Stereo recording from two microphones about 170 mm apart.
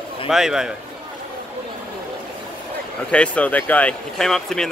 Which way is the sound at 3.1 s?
5° left (ahead or behind).